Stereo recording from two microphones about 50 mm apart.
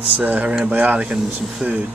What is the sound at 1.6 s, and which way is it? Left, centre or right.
Speech, centre.